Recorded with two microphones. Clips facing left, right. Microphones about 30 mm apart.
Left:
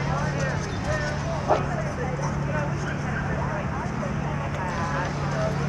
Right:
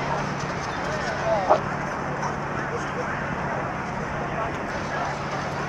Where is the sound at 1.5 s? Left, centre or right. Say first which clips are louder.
Right 1 dB; centre.